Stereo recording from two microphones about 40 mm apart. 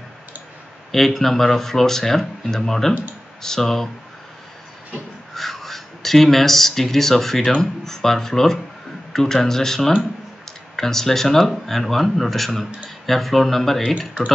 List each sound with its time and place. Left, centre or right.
0.9 s speech: centre
5.3 s speech: centre
13.9 s speech: left